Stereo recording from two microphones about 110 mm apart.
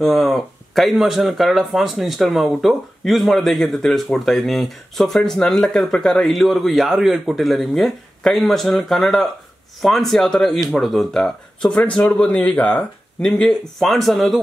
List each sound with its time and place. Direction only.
0.0 s speech: centre (ahead or behind)